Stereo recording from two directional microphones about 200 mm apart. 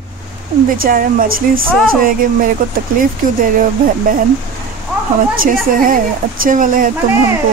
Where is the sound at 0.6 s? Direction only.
45° right (ahead or behind).